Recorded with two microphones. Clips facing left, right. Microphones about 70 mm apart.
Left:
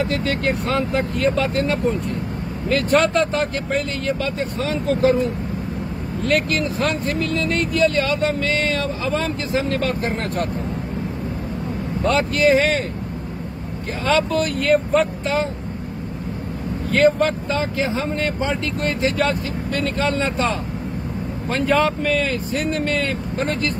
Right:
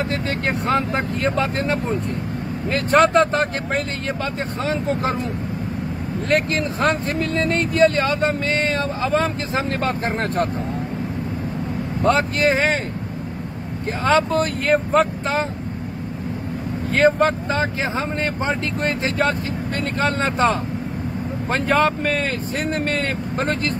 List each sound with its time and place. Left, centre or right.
0.0 s speech: right
6.2 s speech: right
12.0 s speech: right
14.0 s speech: right
16.9 s speech: right